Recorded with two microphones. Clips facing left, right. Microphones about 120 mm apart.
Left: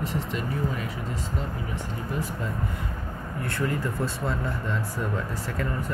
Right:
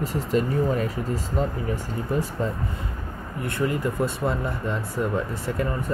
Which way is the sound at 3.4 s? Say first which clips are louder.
Right 3 dB; 20° right (ahead or behind).